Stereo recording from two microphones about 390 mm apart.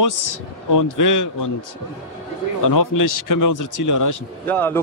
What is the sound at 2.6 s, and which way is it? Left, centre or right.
A man's voice, left.